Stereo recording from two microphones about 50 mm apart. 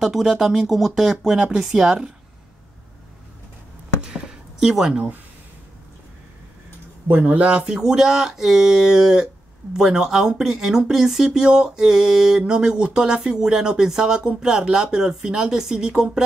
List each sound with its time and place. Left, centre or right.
0.0 s speech: centre
4.0 s a sound: centre
4.6 s speech: centre
7.1 s speech: right
7.4 s speech: centre